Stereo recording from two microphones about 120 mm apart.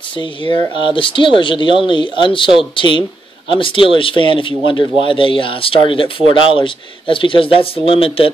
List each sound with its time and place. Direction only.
0.2 s speech: 40° left (ahead or behind)